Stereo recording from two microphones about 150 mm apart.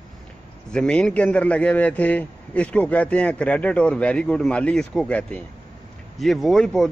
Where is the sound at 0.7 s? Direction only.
5° left (ahead or behind).